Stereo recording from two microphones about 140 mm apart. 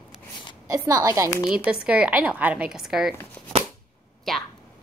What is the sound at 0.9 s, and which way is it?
Speech, 25° right (ahead or behind).